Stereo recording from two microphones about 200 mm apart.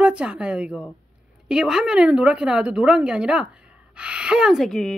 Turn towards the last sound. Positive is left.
turn(degrees=0)  # may be behind; listen again after turning